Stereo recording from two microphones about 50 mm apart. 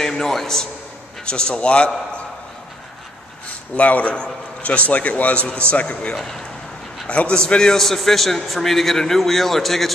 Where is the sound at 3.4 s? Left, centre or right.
Left.